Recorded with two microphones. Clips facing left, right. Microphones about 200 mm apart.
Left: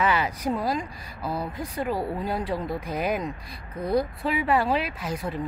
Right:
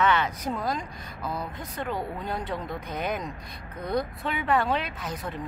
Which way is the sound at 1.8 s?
5° left (ahead or behind).